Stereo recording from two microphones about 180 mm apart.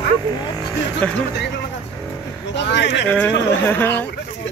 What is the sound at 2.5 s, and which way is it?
Speech, 75° left (ahead or behind).